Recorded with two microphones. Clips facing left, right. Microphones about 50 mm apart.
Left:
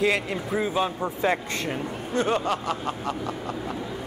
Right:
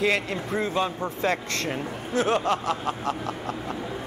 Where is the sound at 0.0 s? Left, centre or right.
Centre.